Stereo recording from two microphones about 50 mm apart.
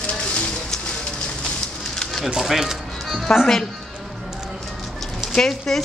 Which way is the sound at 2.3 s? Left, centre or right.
Centre.